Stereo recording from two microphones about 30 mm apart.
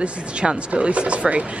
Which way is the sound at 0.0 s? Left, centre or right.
Right.